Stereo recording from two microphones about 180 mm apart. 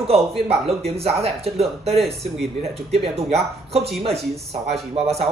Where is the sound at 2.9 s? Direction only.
35° right (ahead or behind).